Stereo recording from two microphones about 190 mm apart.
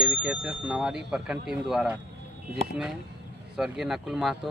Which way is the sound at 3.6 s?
Centre (ahead or behind).